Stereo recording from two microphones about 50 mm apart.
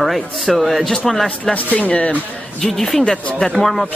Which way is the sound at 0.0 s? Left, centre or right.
Centre.